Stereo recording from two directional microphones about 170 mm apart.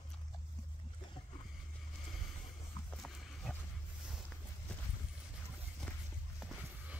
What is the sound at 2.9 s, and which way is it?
Horse, 5° left (ahead or behind).